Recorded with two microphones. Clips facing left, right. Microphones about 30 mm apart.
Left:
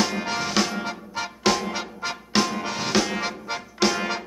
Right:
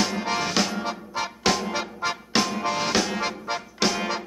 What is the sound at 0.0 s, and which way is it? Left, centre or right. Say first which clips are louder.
Music: even; centre.